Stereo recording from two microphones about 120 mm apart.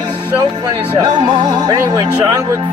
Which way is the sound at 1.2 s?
35° right (ahead or behind).